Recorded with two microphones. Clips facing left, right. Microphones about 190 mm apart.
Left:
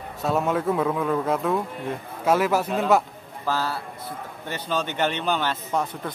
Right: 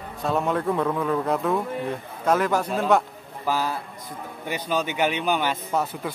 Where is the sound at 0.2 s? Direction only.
Centre (ahead or behind).